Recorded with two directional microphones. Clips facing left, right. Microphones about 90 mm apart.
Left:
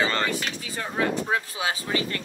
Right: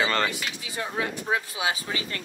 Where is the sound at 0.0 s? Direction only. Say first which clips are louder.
Even; 40° left (ahead or behind).